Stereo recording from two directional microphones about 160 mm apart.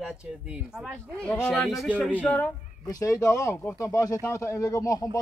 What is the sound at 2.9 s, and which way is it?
Speech, 20° left (ahead or behind).